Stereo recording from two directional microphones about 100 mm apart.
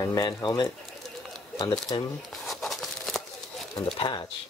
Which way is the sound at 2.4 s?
Centre (ahead or behind).